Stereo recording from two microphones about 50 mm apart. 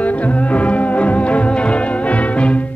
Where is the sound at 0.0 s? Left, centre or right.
Left.